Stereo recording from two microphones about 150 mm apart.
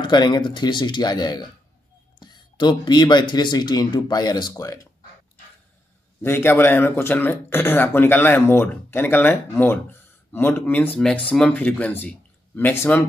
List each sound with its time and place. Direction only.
0.0 s speech: 30° left (ahead or behind)
6.2 s speech: 15° left (ahead or behind)